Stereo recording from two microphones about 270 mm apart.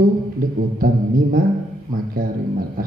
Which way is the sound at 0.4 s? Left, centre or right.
Right.